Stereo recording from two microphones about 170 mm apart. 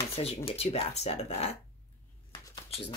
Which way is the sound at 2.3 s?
25° left (ahead or behind).